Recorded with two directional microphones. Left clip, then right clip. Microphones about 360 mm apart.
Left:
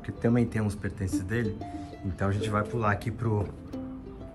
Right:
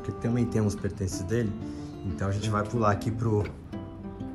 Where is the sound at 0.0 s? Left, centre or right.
Centre.